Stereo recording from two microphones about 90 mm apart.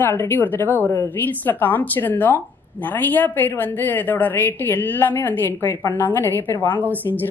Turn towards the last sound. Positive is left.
turn(degrees=20)  # may be behind; listen again after turning